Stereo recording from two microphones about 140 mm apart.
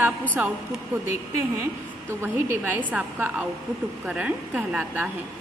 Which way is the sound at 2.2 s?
15° right (ahead or behind).